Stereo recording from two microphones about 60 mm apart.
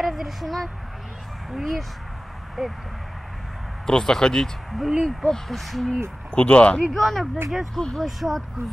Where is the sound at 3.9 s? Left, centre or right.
Centre.